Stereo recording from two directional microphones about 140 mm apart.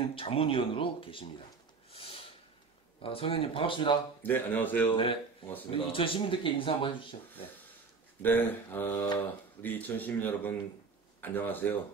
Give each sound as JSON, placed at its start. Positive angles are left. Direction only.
{"t": 0.1, "sound": "speech", "side_deg": 40}
{"t": 1.9, "sound": "snort", "side_deg": 40}
{"t": 3.0, "sound": "speech", "side_deg": 40}
{"t": 4.2, "sound": "speech", "side_deg": 15}
{"t": 5.7, "sound": "speech", "side_deg": 40}
{"t": 8.2, "sound": "speech", "side_deg": 15}